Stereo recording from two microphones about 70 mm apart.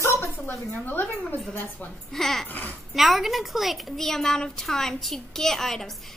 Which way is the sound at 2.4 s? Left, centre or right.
Left.